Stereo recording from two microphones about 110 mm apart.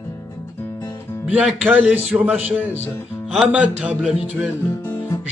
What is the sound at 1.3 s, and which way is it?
A man's voice, 10° right (ahead or behind).